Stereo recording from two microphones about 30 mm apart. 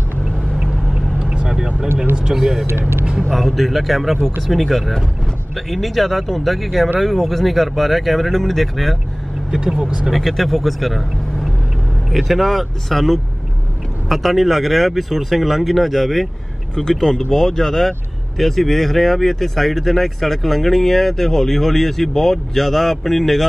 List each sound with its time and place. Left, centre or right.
2.3 s speech: centre
3.3 s speech: centre
9.5 s speech: right
10.1 s speech: centre
16.9 s speech: centre
17.3 s speech: centre